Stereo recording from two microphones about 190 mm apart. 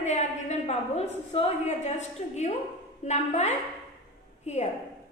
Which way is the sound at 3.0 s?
35° left (ahead or behind).